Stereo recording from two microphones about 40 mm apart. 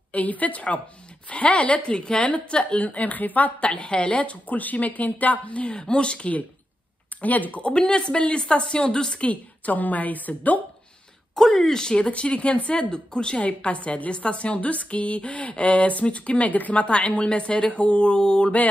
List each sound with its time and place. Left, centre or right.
0.1 s a woman's voice: left
2.3 s a woman's voice: left
3.6 s a woman's voice: left
5.7 s speech: left
7.2 s a woman's voice: left
7.6 s speech: left
9.3 s a woman's voice: left
11.3 s speech: centre
12.1 s speech: left
13.4 s a woman's voice: left